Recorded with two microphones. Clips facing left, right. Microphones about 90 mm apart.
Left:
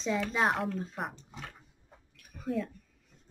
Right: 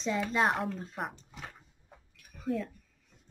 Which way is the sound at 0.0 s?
Centre (ahead or behind).